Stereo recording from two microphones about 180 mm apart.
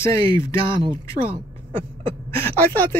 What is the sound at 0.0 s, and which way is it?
Speech, 15° left (ahead or behind).